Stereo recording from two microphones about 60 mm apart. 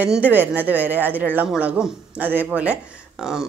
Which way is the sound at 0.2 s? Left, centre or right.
Right.